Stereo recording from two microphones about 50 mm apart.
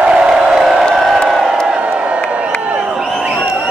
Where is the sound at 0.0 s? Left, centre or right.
Centre.